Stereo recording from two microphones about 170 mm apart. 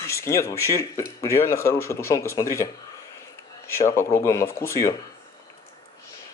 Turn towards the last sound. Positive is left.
turn(degrees=15)  # may be behind; listen again after turning